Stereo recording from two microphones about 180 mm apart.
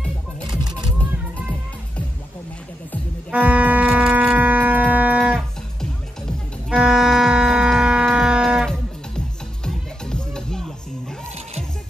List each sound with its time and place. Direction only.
0.5 s music: 25° right (ahead or behind)
3.3 s music: 10° right (ahead or behind)